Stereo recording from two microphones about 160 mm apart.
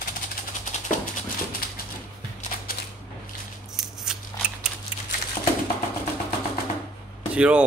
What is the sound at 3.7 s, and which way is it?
Scissors, centre (ahead or behind).